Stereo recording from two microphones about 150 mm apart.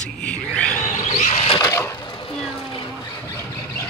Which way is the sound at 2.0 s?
40° left (ahead or behind).